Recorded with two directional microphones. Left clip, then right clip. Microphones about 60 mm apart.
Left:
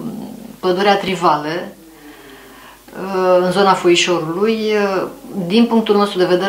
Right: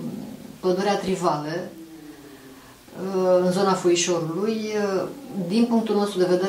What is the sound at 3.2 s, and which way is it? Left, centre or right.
Speech, right.